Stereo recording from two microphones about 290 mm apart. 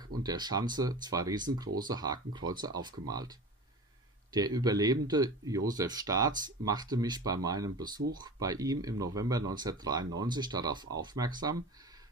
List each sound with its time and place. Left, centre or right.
0.2 s speech: centre